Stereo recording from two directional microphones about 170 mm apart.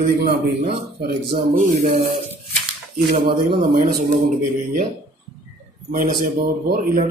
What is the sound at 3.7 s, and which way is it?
Music, 50° right (ahead or behind).